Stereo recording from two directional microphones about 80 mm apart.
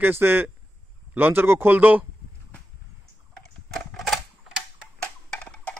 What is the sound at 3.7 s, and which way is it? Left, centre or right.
Typewriter, centre.